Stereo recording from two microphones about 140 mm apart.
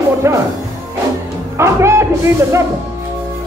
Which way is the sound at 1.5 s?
20° right (ahead or behind).